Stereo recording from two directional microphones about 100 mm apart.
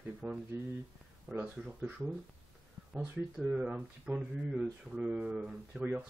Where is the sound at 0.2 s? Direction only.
20° right (ahead or behind).